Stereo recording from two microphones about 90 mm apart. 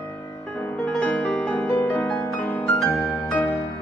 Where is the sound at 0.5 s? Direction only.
10° left (ahead or behind).